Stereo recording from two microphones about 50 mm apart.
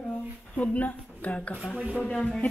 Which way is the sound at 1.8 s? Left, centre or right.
Right.